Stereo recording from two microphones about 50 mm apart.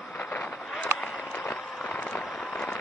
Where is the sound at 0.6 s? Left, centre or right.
Centre.